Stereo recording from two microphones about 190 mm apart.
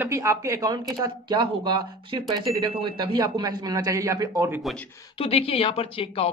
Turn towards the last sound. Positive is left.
turn(degrees=30)  # may be behind; listen again after turning